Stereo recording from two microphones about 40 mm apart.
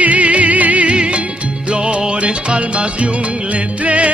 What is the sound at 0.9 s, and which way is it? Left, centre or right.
Music, right.